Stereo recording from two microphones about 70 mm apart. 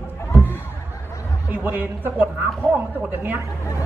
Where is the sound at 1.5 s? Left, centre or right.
Right.